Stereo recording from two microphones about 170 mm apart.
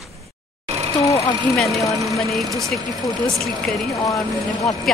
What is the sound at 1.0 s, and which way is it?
Vehicle, 20° left (ahead or behind).